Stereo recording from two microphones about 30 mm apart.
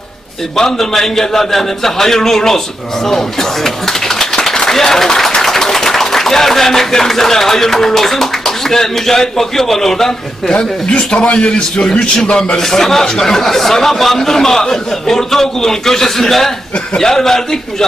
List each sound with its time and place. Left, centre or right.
0.6 s a man's voice: centre
10.5 s a man's voice: left
11.5 s a man's voice: left; by 16.5 s centre
16.7 s a man's voice: left
17.1 s a man's voice: centre